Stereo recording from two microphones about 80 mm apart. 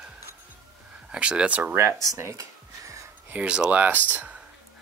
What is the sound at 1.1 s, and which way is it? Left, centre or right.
Speech, centre.